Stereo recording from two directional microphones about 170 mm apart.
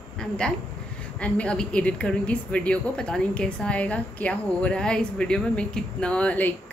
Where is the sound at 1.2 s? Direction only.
5° left (ahead or behind).